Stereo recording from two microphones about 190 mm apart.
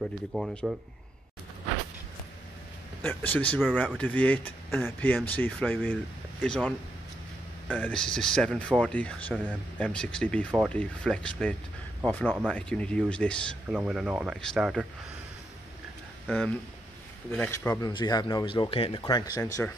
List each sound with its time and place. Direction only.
0.3 s speech: centre (ahead or behind)
3.0 s speech: 10° left (ahead or behind)
7.7 s speech: 5° left (ahead or behind)
13.7 s speech: 5° right (ahead or behind)
16.3 s speech: 5° left (ahead or behind)